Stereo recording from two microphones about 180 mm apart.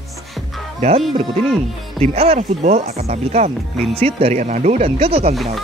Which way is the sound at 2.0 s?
35° right (ahead or behind).